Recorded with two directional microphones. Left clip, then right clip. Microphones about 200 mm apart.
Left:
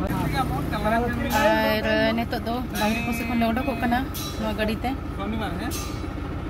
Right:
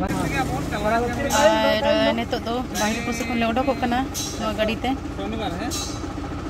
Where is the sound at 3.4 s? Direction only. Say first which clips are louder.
Right 4 dB; 5° right (ahead or behind).